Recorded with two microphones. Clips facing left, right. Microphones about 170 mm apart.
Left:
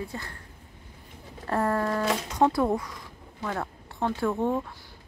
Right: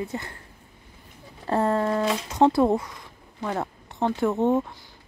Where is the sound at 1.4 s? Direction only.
25° right (ahead or behind).